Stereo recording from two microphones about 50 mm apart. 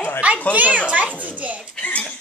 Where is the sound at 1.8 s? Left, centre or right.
Left.